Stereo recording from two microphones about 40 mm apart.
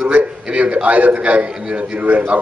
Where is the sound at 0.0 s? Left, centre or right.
Right.